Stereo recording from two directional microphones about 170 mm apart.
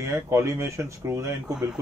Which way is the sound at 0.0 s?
15° right (ahead or behind).